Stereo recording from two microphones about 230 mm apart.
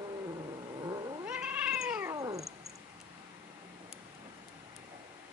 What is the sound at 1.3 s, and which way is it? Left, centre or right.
Cat, centre.